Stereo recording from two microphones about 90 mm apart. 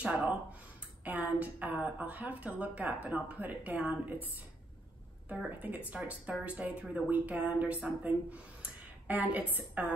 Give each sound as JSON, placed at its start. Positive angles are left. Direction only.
{"t": 0.0, "sound": "speech", "side_deg": -10}
{"t": 5.5, "sound": "speech", "side_deg": -15}